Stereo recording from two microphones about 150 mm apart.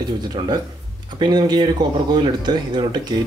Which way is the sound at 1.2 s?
30° right (ahead or behind).